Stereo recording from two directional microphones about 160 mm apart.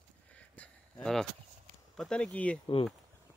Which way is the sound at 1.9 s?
5° left (ahead or behind).